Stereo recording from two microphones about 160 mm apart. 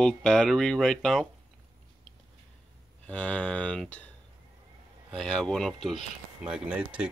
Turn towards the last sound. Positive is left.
turn(degrees=-10)  # may be behind; listen again after turning